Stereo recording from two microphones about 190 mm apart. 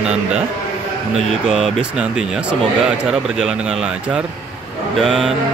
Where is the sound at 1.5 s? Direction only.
5° right (ahead or behind).